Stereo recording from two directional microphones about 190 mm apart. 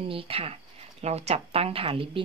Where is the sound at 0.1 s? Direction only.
30° right (ahead or behind).